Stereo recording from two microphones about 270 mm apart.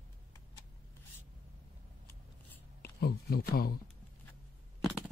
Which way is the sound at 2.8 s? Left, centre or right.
Left.